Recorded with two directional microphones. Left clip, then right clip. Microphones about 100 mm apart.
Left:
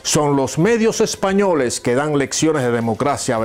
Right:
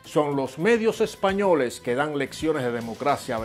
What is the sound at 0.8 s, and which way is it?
Speech, 45° left (ahead or behind).